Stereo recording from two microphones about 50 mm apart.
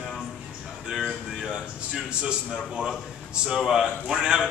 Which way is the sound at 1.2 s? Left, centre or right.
Centre.